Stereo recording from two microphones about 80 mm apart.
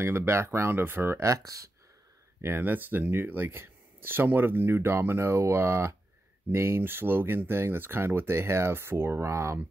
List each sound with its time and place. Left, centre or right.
0.0 s speech: right
1.3 s speech: right
2.4 s speech: right